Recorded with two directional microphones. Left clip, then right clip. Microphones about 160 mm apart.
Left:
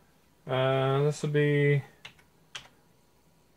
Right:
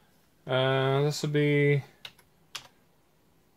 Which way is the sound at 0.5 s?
55° right (ahead or behind).